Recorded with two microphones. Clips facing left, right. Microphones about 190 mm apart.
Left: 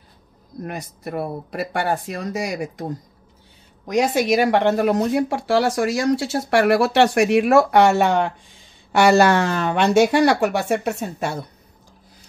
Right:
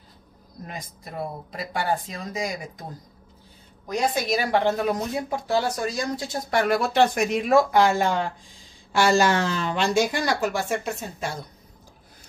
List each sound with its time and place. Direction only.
0.7 s speech: 65° left (ahead or behind)
3.8 s speech: 75° left (ahead or behind)